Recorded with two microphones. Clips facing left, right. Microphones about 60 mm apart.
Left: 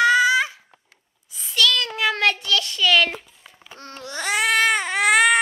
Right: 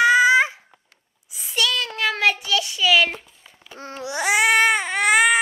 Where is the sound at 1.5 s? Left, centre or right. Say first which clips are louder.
Left 3 dB; centre.